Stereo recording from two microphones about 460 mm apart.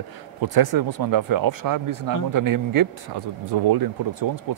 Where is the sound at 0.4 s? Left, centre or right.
Right.